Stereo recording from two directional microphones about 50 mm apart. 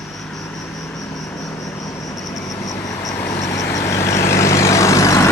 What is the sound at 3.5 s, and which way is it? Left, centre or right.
Vehicle, left.